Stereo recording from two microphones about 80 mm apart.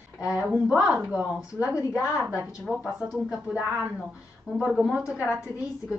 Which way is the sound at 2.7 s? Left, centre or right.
Centre.